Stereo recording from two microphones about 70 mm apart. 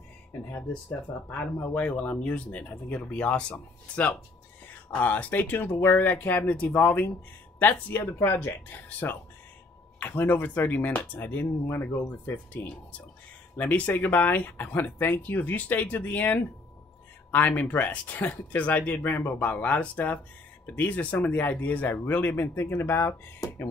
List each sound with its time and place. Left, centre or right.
0.5 s speech: left
6.7 s speech: left